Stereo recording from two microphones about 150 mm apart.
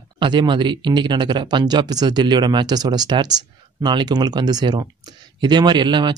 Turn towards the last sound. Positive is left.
turn(degrees=-30)  # may be behind; listen again after turning